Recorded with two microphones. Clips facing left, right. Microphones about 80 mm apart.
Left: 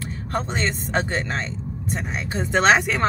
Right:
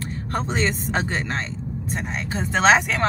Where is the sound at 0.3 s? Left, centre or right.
Centre.